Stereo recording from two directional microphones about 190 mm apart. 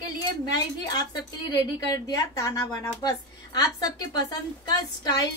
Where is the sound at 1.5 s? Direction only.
20° left (ahead or behind).